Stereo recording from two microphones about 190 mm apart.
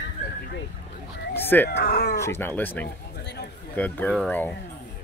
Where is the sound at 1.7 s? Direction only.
60° left (ahead or behind).